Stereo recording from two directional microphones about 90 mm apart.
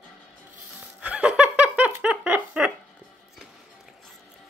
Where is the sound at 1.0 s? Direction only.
15° right (ahead or behind).